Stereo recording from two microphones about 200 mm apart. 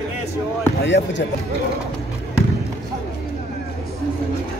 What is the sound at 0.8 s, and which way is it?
Speech, 65° left (ahead or behind).